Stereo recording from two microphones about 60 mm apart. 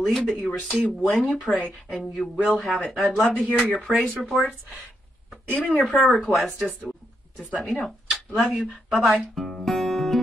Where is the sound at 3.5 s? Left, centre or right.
Centre.